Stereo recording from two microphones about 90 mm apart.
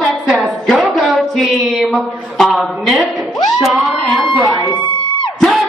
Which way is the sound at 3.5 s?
Centre (ahead or behind).